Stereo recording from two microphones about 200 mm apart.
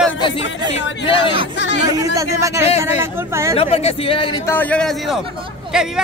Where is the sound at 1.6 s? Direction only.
60° left (ahead or behind).